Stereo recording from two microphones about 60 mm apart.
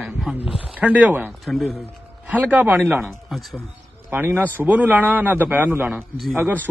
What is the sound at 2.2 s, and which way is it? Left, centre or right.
Speech, right.